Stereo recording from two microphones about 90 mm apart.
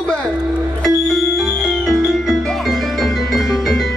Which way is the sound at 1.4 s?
Centre (ahead or behind).